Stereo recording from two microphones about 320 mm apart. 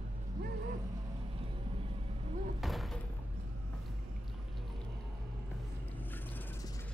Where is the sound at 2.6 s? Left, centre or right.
Centre.